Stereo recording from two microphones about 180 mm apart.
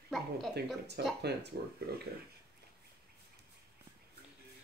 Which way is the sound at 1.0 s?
65° right (ahead or behind).